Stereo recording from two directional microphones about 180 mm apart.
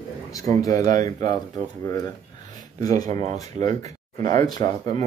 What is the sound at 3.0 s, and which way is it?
Speech, 40° right (ahead or behind).